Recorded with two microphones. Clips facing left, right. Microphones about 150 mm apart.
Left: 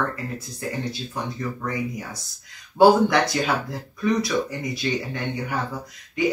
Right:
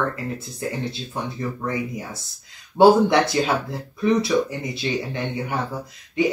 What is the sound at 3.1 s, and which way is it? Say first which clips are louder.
Speech: right 2 dB; 25° right (ahead or behind).